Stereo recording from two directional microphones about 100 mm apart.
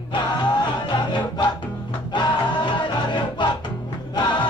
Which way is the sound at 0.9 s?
50° left (ahead or behind).